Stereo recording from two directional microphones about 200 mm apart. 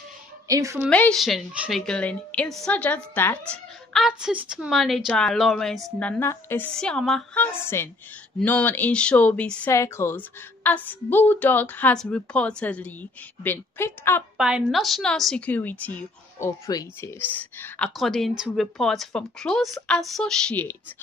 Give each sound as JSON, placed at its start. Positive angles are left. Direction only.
{"t": 0.5, "sound": "a woman's voice", "side_deg": -15}
{"t": 0.8, "sound": "a woman's voice", "side_deg": 5}
{"t": 3.9, "sound": "a woman's voice", "side_deg": 0}
{"t": 14.3, "sound": "a woman's voice", "side_deg": -5}